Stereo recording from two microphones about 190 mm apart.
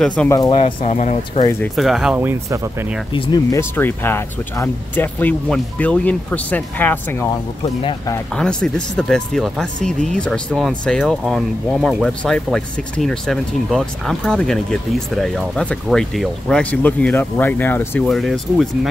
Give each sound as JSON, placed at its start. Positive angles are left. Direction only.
{"t": 0.0, "sound": "speech", "side_deg": 5}
{"t": 0.3, "sound": "speech", "side_deg": 20}
{"t": 0.6, "sound": "speech", "side_deg": 35}
{"t": 1.6, "sound": "speech", "side_deg": 0}
{"t": 3.1, "sound": "speech", "side_deg": 25}
{"t": 3.7, "sound": "speech", "side_deg": 10}
{"t": 8.4, "sound": "speech", "side_deg": 5}